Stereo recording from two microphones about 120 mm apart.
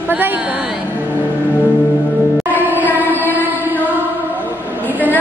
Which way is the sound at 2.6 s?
15° right (ahead or behind).